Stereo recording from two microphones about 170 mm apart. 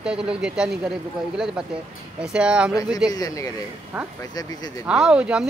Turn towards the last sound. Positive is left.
turn(degrees=-5)  # may be behind; listen again after turning